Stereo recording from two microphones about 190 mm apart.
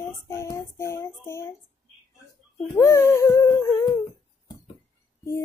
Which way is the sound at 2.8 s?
15° left (ahead or behind).